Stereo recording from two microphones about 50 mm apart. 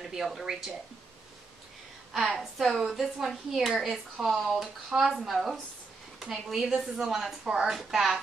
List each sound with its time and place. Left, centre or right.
0.0 s speech: centre
2.1 s a woman's voice: centre
7.4 s a woman's voice: centre
7.7 s speech: centre